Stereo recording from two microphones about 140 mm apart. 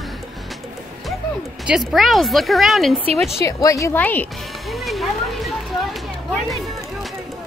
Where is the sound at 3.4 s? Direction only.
20° left (ahead or behind).